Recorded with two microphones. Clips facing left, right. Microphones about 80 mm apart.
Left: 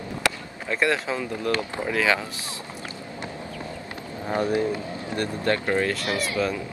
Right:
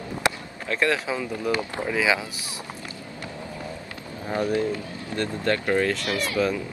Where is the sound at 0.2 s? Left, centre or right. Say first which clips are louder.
Right 1 dB; right.